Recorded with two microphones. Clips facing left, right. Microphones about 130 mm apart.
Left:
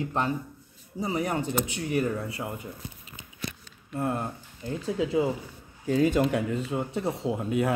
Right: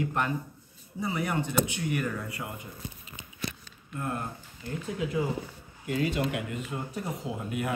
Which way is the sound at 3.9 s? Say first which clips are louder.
Left 5 dB; 30° left (ahead or behind).